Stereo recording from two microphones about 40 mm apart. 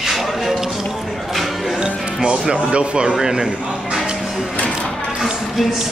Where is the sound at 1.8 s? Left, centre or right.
Right.